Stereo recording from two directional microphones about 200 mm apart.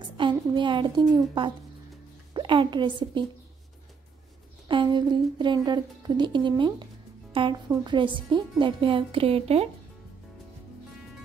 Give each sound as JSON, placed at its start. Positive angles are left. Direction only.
{"t": 0.2, "sound": "speech", "side_deg": -25}
{"t": 2.3, "sound": "a woman's voice", "side_deg": -25}
{"t": 4.6, "sound": "speech", "side_deg": -25}